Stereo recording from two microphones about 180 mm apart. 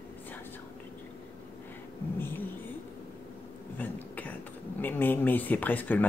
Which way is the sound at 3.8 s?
10° left (ahead or behind).